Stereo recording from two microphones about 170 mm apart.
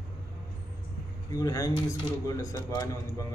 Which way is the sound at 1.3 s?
20° left (ahead or behind).